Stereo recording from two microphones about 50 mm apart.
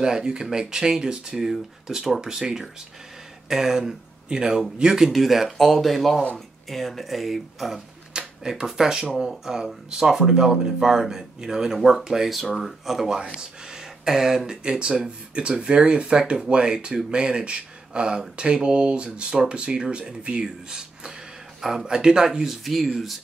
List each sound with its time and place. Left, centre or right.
0.0 s a man's voice: centre
8.1 s a sound: centre
8.6 s speech: centre